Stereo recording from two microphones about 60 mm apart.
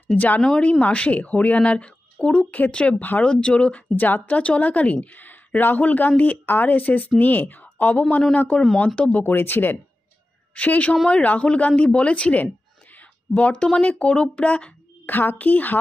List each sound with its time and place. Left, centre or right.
0.1 s a woman's voice: left
0.4 s speech: centre
0.7 s a woman's voice: left
3.0 s a woman's voice: left
3.3 s speech: centre
3.9 s a woman's voice: left
9.2 s a woman's voice: left
10.5 s a woman's voice: left
15.0 s a woman's voice: left